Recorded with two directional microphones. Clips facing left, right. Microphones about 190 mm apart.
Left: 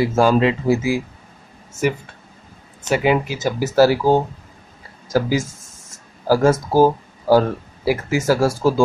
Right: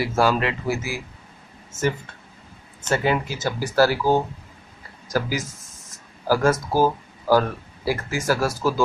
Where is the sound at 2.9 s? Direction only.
15° left (ahead or behind).